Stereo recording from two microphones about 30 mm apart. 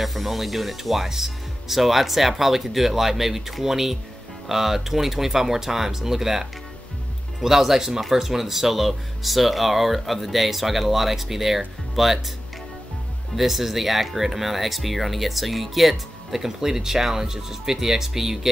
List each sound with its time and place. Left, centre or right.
0.0 s speech: centre
7.4 s speech: centre
13.4 s speech: centre